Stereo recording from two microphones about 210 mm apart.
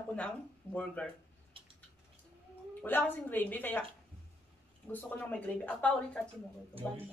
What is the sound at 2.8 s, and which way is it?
Speech, 10° left (ahead or behind).